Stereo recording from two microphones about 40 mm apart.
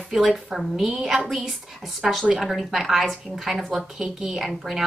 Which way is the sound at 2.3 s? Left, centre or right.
Centre.